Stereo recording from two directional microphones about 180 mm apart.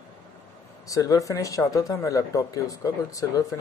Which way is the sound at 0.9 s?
20° left (ahead or behind).